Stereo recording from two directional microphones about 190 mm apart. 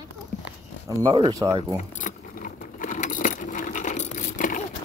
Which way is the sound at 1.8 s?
40° left (ahead or behind).